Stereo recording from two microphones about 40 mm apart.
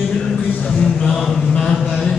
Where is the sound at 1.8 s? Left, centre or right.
Centre.